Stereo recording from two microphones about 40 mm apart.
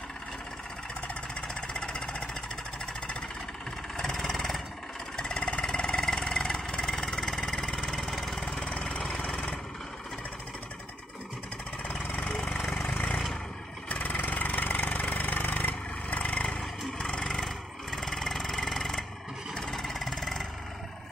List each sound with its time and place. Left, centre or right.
1.5 s vehicle: centre
3.9 s vehicle: centre
4.2 s vehicle: centre
5.1 s engine: centre
5.4 s vehicle: left
7.9 s lawn mower: centre
8.4 s engine: centre
8.6 s engine: left
11.9 s lawn mower: left
13.8 s vehicle: left
16.2 s vehicle: left
17.0 s vehicle: centre